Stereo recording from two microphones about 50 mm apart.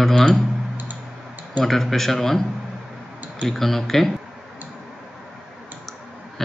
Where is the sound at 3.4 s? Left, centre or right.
Centre.